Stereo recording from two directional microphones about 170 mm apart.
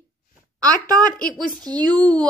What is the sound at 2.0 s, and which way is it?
Speech, 5° left (ahead or behind).